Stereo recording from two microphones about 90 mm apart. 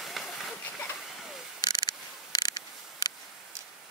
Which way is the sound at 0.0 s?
Centre (ahead or behind).